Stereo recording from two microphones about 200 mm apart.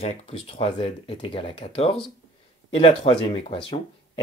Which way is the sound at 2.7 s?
30° left (ahead or behind).